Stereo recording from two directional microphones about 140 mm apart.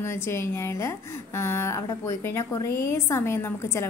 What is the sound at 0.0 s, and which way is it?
A woman's voice, 20° left (ahead or behind).